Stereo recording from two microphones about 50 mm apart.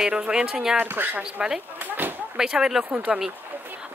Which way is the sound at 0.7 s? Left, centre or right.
Right.